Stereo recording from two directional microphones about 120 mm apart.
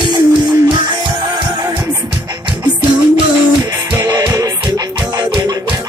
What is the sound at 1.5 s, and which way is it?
Music, 30° right (ahead or behind).